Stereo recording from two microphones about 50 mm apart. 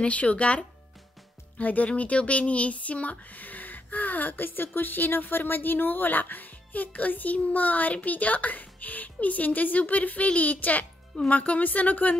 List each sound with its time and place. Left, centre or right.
0.0 s speech: left